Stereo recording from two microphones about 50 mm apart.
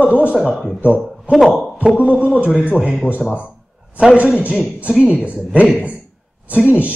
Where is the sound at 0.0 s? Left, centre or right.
Right.